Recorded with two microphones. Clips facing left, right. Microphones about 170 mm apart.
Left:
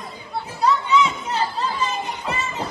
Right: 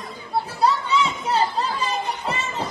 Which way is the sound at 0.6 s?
35° right (ahead or behind).